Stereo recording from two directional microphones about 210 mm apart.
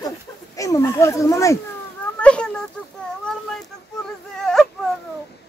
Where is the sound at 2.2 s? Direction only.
5° left (ahead or behind).